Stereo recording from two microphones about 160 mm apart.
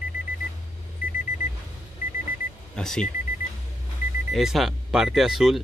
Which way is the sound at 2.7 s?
5° left (ahead or behind).